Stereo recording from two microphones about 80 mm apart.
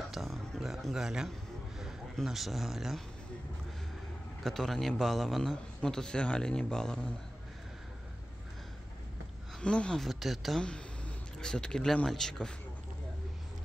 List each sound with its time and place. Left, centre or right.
0.1 s a sound: centre
2.1 s a man's voice: centre
4.4 s a man's voice: centre
9.6 s speech: centre
10.0 s a man's voice: centre